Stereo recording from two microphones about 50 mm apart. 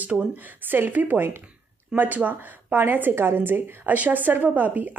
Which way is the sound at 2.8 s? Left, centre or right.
Right.